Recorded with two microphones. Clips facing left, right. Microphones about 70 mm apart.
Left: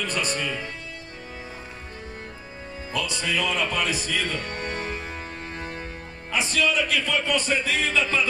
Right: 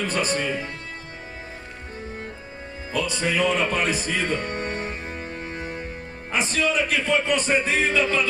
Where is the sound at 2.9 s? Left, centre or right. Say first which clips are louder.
Right 3 dB; right.